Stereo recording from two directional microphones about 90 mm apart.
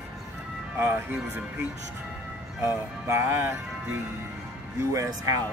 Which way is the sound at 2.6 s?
30° right (ahead or behind).